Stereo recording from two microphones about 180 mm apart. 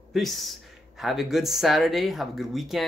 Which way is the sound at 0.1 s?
Centre (ahead or behind).